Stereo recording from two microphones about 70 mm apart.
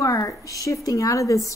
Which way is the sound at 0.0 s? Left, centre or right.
Left.